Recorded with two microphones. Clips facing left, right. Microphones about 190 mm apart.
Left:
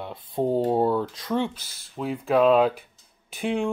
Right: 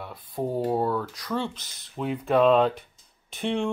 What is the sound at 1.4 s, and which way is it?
Speech, 5° left (ahead or behind).